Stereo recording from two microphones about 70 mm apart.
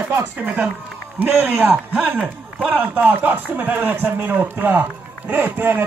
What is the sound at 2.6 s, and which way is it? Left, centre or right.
Speech, right.